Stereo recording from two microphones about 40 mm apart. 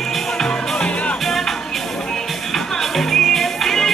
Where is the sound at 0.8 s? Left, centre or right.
Left.